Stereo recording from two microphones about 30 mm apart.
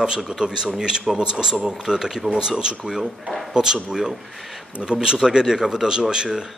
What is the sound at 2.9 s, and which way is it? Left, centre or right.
Speech, centre.